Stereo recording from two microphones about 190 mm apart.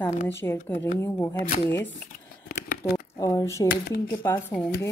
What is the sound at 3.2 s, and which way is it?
Speech, 15° left (ahead or behind).